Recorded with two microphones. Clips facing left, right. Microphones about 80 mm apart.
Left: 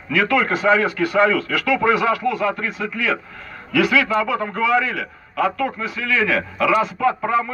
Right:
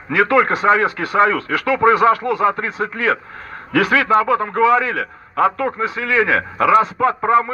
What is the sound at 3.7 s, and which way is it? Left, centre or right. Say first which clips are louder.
A man's voice: right 3 dB; right.